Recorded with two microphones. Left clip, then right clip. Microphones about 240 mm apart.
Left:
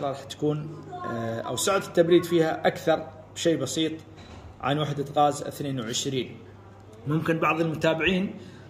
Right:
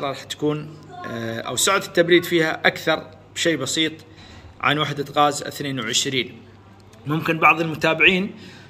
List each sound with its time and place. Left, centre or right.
0.0 s a man's voice: centre